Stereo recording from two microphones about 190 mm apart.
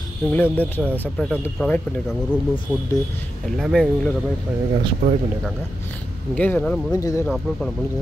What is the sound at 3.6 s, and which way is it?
Speech, centre (ahead or behind).